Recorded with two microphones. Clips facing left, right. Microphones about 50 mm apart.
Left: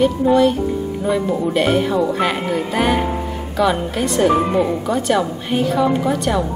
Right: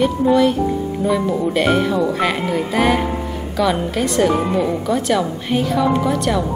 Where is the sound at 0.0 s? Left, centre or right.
Centre.